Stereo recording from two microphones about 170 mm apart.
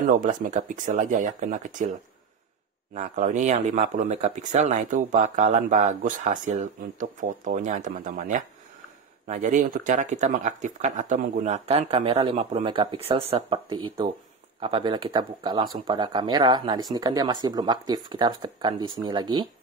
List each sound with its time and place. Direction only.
0.2 s speech: 50° right (ahead or behind)
2.9 s speech: 45° right (ahead or behind); by 19.4 s 25° right (ahead or behind)